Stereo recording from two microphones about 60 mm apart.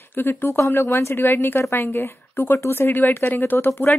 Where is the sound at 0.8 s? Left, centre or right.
Left.